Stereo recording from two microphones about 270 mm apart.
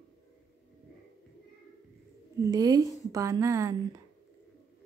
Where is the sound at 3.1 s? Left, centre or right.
Centre.